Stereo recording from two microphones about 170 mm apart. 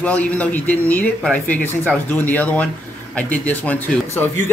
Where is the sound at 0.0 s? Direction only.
5° left (ahead or behind).